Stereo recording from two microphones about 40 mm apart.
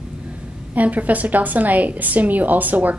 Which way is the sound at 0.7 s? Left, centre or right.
Right.